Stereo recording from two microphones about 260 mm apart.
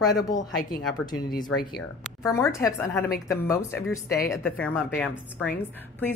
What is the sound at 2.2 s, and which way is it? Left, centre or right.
A woman's voice, centre.